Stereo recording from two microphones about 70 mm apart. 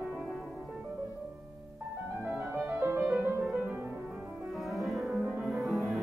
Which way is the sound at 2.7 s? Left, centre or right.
Right.